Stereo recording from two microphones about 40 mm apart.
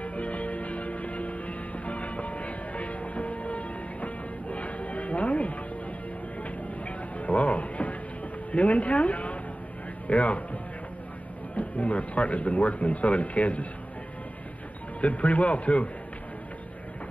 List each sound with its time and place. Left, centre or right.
0.0 s music: left
8.5 s a woman's voice: left
11.5 s speech: left
15.0 s a man's voice: left